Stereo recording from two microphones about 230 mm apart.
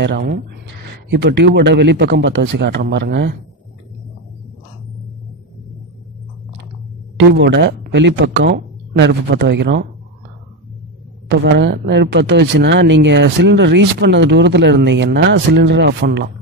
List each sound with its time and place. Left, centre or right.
0.0 s speech: right
7.2 s speech: right
11.2 s speech: right